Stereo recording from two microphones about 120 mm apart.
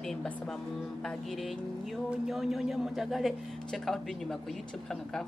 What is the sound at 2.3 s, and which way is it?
A man's voice, centre (ahead or behind).